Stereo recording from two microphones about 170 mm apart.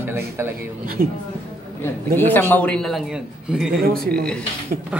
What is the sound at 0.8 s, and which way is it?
Speech, 55° right (ahead or behind).